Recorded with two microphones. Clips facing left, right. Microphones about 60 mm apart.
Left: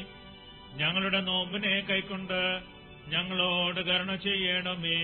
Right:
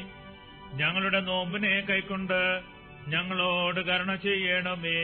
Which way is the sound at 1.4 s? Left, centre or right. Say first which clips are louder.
Right 3 dB; right.